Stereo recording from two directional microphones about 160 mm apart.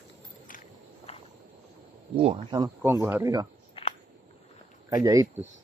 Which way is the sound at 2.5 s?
20° right (ahead or behind).